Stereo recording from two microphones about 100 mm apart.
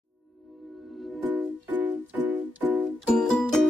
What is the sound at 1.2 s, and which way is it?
Music, 20° right (ahead or behind).